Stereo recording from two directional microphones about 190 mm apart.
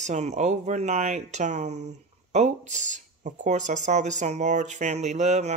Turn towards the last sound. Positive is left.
turn(degrees=-35)  # may be behind; listen again after turning